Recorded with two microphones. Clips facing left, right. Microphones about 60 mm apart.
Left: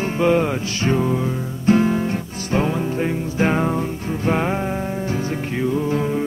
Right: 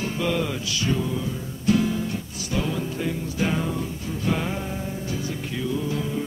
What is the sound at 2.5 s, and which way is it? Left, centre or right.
Music, left.